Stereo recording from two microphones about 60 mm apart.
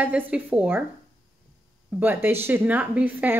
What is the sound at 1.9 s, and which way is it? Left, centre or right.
Speech, right.